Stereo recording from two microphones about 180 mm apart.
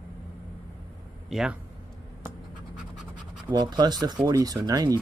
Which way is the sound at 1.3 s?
5° right (ahead or behind).